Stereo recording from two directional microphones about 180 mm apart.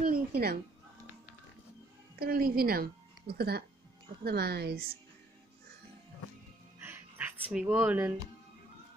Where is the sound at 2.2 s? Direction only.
55° right (ahead or behind).